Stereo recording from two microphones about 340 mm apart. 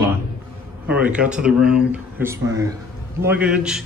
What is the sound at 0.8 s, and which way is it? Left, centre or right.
Speech, centre.